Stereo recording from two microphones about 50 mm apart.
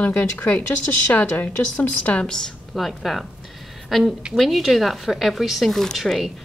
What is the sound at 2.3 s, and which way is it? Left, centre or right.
Speech, centre.